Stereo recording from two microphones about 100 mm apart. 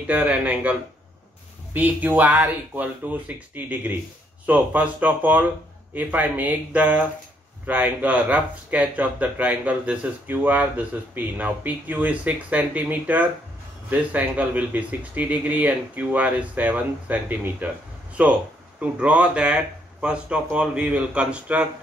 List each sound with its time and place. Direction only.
0.0 s speech: 15° right (ahead or behind)